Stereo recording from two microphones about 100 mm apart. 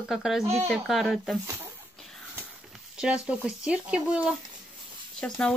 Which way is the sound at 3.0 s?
10° right (ahead or behind).